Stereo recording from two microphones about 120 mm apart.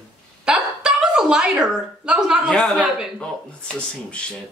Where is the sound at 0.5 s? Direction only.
5° right (ahead or behind).